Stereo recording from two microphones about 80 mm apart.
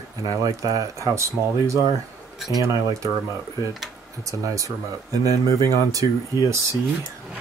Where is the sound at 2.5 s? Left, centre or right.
Right.